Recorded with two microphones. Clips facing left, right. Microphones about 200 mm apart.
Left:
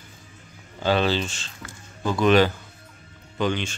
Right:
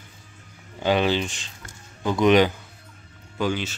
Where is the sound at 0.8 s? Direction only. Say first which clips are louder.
Right 1 dB; 15° right (ahead or behind).